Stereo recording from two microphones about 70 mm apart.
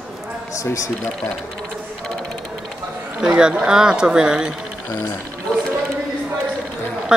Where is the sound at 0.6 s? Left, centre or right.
Left.